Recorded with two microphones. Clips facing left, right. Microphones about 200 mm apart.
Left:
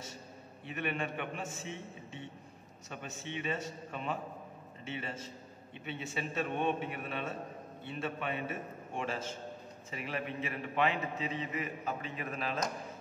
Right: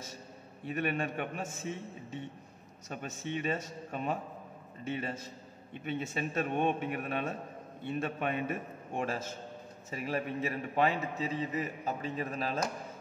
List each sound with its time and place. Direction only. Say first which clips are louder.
0.7 s a man's voice: right 4 dB; 45° right (ahead or behind)